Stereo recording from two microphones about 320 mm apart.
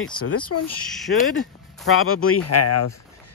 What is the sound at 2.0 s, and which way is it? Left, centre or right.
Speech, left.